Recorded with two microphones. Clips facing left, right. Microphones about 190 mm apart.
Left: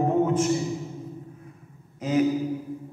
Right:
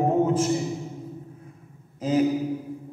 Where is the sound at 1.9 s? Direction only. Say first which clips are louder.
Right 1 dB; 30° right (ahead or behind).